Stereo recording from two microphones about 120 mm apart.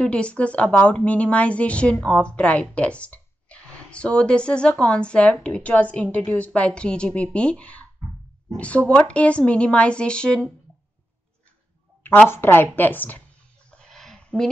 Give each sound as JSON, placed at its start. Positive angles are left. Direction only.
{"t": 0.0, "sound": "a woman's voice", "side_deg": 10}
{"t": 12.0, "sound": "a woman's voice", "side_deg": 15}
{"t": 13.7, "sound": "a sound", "side_deg": 5}